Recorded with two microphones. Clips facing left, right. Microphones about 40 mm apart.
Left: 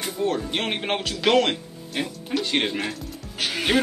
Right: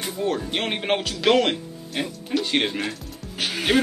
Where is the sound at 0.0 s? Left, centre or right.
Centre.